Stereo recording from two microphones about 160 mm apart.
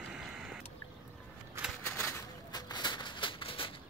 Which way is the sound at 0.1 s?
Centre (ahead or behind).